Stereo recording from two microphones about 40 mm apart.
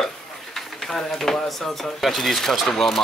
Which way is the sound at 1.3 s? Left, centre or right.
Centre.